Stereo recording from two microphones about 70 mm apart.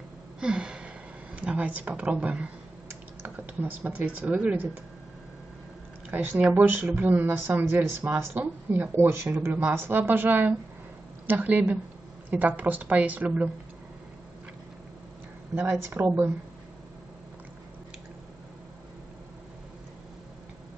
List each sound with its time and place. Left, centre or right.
0.4 s a sound: centre
1.3 s a woman's voice: centre
6.0 s speech: right
15.9 s speech: right